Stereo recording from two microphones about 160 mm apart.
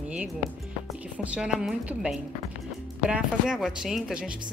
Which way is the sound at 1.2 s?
5° right (ahead or behind).